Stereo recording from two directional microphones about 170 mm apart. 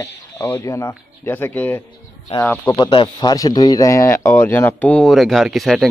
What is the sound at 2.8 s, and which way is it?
A man's voice, 25° left (ahead or behind).